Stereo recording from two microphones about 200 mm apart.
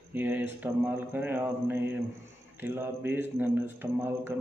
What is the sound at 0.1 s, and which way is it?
Speech, 10° right (ahead or behind).